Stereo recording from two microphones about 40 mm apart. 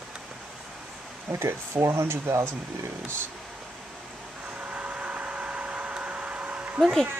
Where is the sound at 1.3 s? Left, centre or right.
Right.